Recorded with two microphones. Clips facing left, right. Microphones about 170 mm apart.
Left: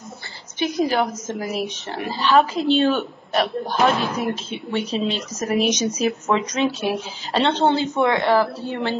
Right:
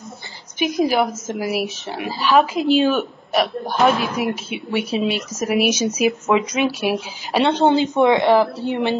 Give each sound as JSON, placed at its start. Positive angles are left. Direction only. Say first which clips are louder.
{"t": 0.6, "sound": "speech", "louder": "right 2 dB", "side_deg": -10}